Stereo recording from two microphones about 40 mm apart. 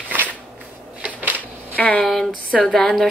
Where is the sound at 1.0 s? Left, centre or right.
Right.